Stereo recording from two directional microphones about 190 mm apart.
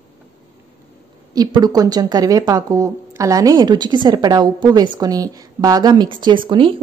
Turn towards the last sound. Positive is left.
turn(degrees=-25)  # may be behind; listen again after turning